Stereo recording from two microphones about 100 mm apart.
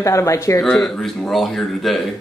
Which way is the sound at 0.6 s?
5° left (ahead or behind).